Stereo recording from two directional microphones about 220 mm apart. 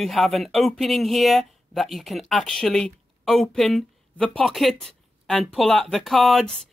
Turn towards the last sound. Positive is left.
turn(degrees=0)  # may be behind; listen again after turning